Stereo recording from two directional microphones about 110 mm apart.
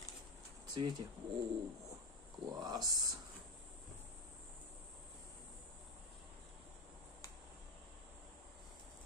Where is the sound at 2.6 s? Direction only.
35° right (ahead or behind).